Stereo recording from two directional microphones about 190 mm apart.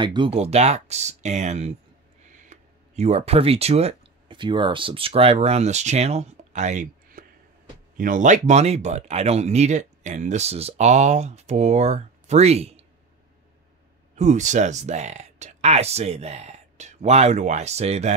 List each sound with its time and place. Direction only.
0.0 s speech: 25° right (ahead or behind)
14.1 s speech: 40° right (ahead or behind)